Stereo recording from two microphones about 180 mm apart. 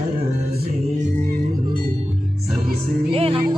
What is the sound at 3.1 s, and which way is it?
Music, 30° right (ahead or behind).